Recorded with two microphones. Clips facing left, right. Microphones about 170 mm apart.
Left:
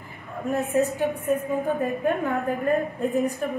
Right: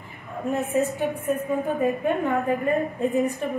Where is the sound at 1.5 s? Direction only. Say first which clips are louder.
Right 1 dB; centre (ahead or behind).